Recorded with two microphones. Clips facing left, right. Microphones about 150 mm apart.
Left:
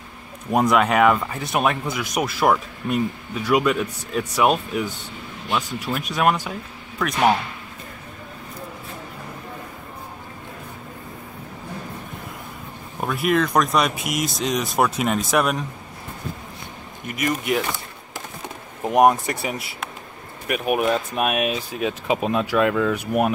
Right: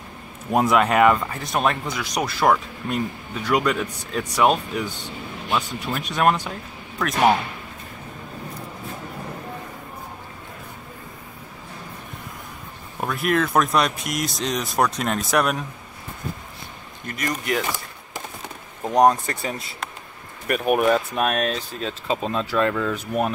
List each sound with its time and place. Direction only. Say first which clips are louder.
0.5 s speech: even; centre (ahead or behind)
13.0 s speech: left 1 dB; centre (ahead or behind)
17.0 s speech: left 3 dB; 10° left (ahead or behind)
18.9 s speech: left 1 dB; 15° left (ahead or behind)
20.4 s speech: right 2 dB; 5° left (ahead or behind)